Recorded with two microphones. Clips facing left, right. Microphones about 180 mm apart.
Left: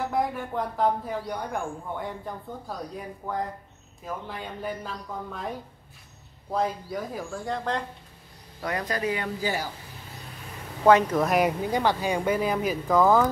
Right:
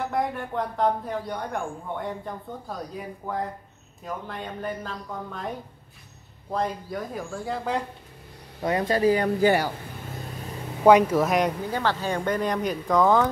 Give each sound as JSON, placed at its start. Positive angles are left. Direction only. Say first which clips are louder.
{"t": 0.0, "sound": "speech", "louder": "even", "side_deg": 0}
{"t": 6.5, "sound": "speech", "louder": "even", "side_deg": 0}
{"t": 8.6, "sound": "speech", "louder": "right 7 dB", "side_deg": -25}
{"t": 9.4, "sound": "speech", "louder": "right 9 dB", "side_deg": -65}
{"t": 10.8, "sound": "speech", "louder": "right 2 dB", "side_deg": -15}
{"t": 11.6, "sound": "speech", "louder": "left 2 dB", "side_deg": 15}